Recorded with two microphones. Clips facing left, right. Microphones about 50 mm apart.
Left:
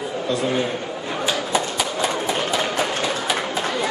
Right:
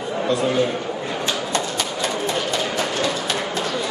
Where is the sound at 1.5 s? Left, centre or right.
Centre.